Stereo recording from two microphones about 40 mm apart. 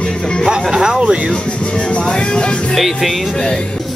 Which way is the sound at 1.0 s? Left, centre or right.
Right.